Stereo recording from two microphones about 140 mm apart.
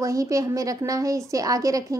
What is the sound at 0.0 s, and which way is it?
A woman's voice, 25° right (ahead or behind).